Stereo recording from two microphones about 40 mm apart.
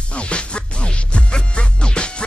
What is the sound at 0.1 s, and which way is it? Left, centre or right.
Music, left.